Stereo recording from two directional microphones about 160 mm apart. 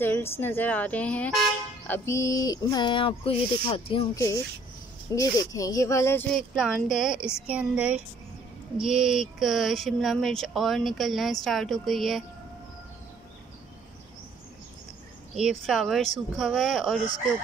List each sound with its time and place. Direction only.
0.0 s speech: 15° left (ahead or behind); by 4.2 s 30° left (ahead or behind)
5.1 s speech: 20° left (ahead or behind)
6.3 s speech: centre (ahead or behind)
15.3 s speech: 5° right (ahead or behind)